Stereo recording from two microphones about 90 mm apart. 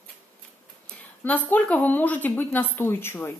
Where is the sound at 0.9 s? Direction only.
20° left (ahead or behind).